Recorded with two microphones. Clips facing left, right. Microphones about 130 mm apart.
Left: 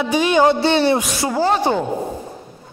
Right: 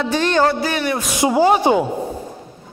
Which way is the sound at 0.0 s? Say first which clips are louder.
Left 1 dB; 10° left (ahead or behind).